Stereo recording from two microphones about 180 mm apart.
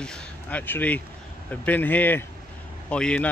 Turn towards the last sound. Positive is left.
turn(degrees=5)  # may be behind; listen again after turning